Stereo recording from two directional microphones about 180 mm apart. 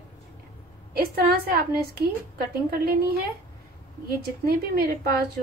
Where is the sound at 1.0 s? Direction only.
55° right (ahead or behind).